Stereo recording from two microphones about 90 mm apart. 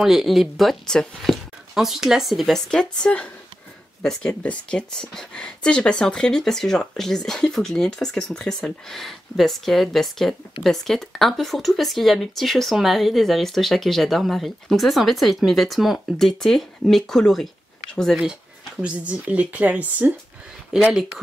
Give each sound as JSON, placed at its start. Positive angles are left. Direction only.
{"t": 0.0, "sound": "speech", "side_deg": -5}
{"t": 18.8, "sound": "speech", "side_deg": -15}